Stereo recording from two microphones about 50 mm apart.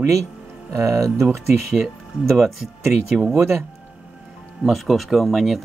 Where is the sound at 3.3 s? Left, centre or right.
Right.